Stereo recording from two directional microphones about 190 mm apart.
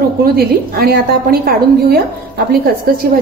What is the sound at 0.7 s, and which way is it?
A woman's voice, 55° right (ahead or behind).